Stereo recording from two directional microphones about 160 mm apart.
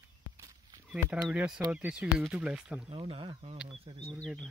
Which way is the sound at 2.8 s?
35° right (ahead or behind).